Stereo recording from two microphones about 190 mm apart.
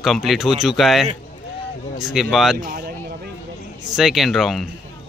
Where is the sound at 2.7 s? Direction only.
55° right (ahead or behind).